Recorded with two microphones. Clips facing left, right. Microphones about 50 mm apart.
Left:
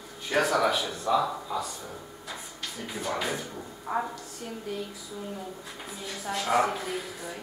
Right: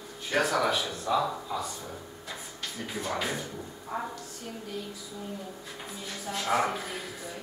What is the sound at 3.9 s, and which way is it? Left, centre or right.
Speech, left.